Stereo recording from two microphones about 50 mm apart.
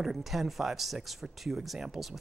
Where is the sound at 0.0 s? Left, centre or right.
Centre.